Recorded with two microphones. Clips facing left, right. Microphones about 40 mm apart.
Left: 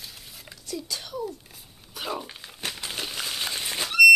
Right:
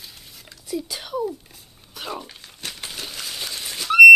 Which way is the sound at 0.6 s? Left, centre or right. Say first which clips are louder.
Right 5 dB; centre.